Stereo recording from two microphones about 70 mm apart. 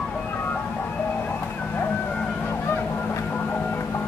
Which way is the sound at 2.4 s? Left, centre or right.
Left.